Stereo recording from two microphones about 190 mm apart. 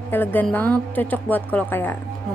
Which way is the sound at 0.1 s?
10° left (ahead or behind).